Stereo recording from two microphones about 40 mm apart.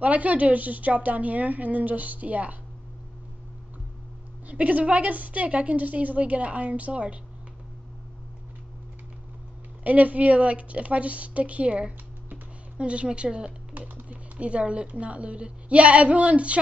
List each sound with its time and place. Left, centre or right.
0.0 s a woman's voice: right
4.5 s a woman's voice: right
9.8 s a woman's voice: right
14.0 s a sound: right
15.0 s a woman's voice: right